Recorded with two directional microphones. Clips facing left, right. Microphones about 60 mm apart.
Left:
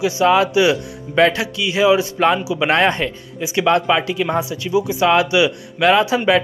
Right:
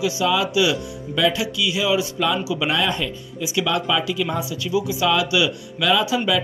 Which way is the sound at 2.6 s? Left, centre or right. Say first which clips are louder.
Left 8 dB; left.